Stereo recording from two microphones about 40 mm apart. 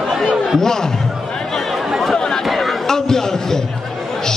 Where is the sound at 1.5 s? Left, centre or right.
Centre.